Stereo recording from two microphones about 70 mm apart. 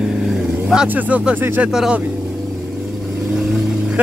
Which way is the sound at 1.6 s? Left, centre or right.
Centre.